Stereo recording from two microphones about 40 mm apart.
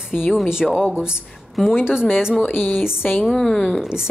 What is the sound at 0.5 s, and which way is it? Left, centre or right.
Speech, centre.